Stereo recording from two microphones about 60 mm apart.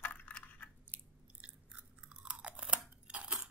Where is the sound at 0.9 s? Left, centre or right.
Right.